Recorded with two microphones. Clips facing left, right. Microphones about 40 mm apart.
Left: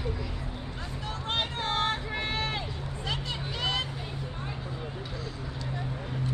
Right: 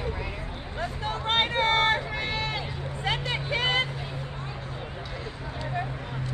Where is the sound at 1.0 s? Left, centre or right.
Right.